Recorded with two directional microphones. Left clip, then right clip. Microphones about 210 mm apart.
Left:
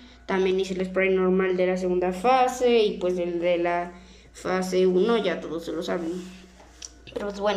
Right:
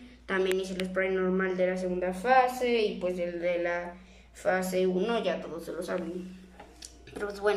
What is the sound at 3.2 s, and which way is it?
A woman's voice, 20° left (ahead or behind).